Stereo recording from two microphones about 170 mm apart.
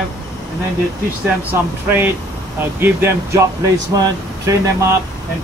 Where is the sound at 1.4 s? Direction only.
10° right (ahead or behind).